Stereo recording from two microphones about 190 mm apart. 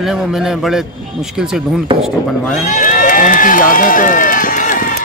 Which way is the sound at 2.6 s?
45° left (ahead or behind).